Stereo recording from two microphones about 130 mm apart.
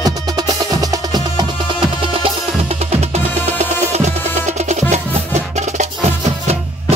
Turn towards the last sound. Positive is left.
turn(degrees=-60)  # may be behind; listen again after turning